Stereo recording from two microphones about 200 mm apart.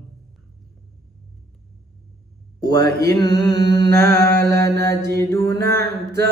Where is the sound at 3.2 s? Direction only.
20° left (ahead or behind).